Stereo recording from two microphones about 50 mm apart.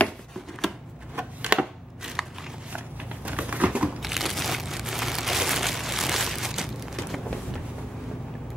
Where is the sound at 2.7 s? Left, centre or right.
Right.